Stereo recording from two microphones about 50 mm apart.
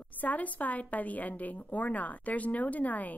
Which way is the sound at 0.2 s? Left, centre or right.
Left.